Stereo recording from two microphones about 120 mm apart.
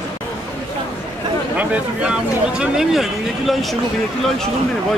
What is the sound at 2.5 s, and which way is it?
Speech, 5° right (ahead or behind).